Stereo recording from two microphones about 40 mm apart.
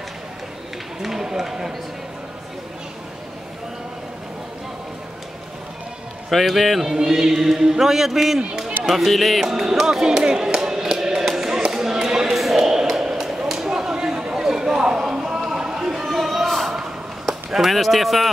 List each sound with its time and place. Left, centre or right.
1.0 s speech: centre
6.3 s speech: centre
7.0 s a man's voice: centre
8.4 s speech: right
8.8 s speech: centre
9.5 s a man's voice: centre
10.0 s chop: right
12.4 s a sound: centre
17.3 s speech: centre